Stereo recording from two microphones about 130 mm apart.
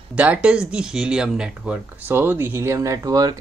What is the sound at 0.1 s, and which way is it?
Speech, 10° right (ahead or behind).